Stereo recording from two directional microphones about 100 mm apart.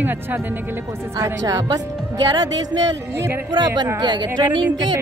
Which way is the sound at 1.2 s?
35° right (ahead or behind).